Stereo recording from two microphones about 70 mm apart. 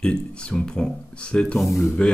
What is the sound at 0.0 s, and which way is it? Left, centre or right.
Speech, centre.